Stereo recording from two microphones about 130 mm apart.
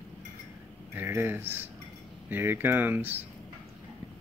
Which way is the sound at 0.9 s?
15° right (ahead or behind).